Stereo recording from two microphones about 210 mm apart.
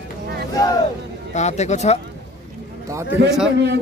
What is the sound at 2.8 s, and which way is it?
Speech, 15° right (ahead or behind).